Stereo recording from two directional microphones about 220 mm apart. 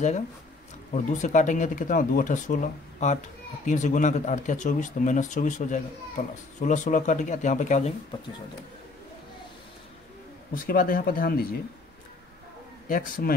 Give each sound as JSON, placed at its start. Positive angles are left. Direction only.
{"t": 0.9, "sound": "speech", "side_deg": 35}
{"t": 10.7, "sound": "speech", "side_deg": 40}
{"t": 12.8, "sound": "speech", "side_deg": 40}